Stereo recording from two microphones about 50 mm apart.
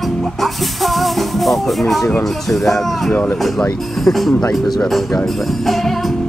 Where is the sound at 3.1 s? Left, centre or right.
Left.